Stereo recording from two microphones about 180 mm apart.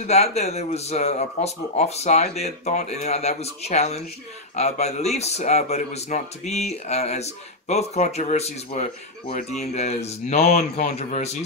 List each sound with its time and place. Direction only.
0.0 s a man's voice: 35° left (ahead or behind)